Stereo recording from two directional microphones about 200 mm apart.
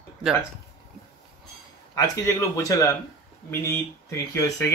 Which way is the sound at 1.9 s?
15° left (ahead or behind).